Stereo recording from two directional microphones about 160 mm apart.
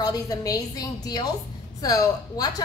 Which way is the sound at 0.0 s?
20° left (ahead or behind).